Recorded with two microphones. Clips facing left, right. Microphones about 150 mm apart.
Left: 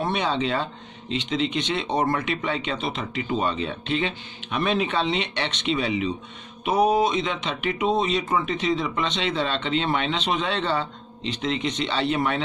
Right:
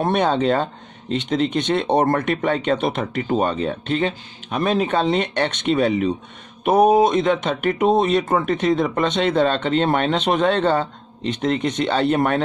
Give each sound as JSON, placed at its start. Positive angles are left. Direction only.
{"t": 0.0, "sound": "speech", "side_deg": -50}